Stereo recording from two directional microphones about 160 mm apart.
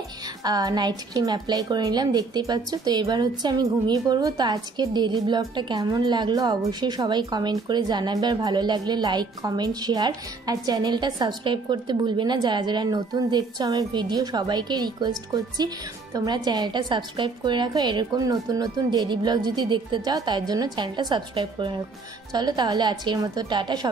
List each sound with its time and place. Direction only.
0.4 s a woman's voice: 25° right (ahead or behind)